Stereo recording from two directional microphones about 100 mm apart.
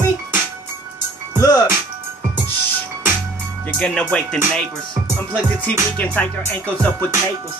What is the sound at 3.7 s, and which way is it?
Music, 10° left (ahead or behind).